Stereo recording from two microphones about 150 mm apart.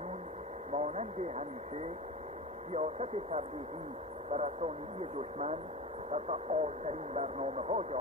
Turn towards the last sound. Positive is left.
turn(degrees=-45)  # may be behind; listen again after turning